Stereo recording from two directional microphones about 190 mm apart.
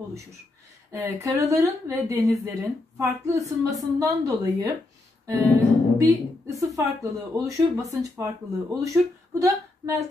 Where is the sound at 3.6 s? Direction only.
15° right (ahead or behind).